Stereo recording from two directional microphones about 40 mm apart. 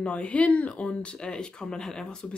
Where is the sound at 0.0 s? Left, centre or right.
Left; by 2.1 s centre.